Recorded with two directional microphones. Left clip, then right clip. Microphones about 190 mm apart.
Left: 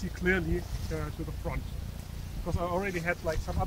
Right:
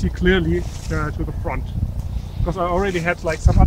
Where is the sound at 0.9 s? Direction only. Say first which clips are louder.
Right 13 dB; 45° left (ahead or behind).